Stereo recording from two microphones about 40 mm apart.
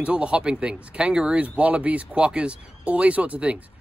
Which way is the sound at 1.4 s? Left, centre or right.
Right.